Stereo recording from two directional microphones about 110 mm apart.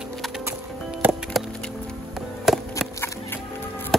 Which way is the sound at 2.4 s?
Centre (ahead or behind).